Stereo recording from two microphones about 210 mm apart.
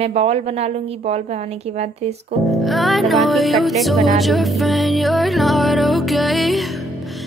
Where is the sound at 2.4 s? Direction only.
Centre (ahead or behind).